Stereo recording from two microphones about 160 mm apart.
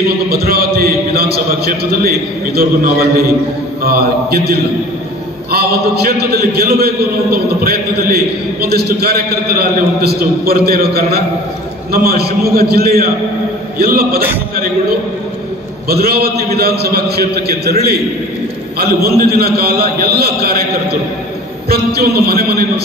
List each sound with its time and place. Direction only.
0.3 s a man's voice: 75° right (ahead or behind)
15.9 s a man's voice: 75° right (ahead or behind)
18.8 s a man's voice: 75° right (ahead or behind)